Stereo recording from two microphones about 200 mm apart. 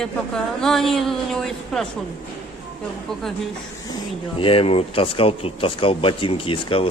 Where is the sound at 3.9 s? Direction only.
25° left (ahead or behind).